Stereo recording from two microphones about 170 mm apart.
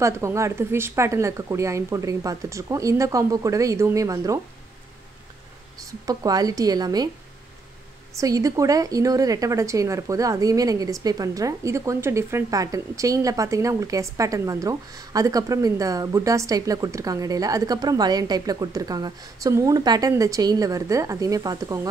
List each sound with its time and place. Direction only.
0.0 s a woman's voice: 15° right (ahead or behind)
5.9 s a woman's voice: 20° right (ahead or behind)
8.2 s a woman's voice: 20° right (ahead or behind)